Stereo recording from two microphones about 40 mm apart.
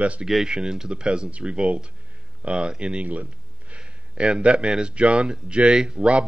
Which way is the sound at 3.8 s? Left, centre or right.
Right.